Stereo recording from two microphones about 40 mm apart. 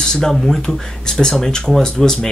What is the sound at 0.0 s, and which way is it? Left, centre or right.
Speech, centre.